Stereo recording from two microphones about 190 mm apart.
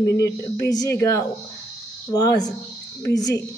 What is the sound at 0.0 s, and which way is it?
A woman's voice, 15° left (ahead or behind).